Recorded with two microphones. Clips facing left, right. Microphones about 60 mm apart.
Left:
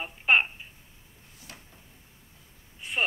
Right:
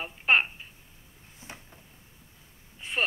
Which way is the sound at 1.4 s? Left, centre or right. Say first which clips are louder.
Right 3 dB; right.